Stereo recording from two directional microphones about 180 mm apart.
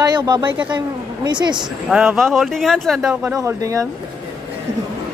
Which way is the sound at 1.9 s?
5° right (ahead or behind).